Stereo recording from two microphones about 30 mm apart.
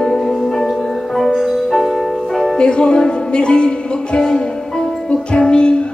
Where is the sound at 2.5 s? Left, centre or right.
Left.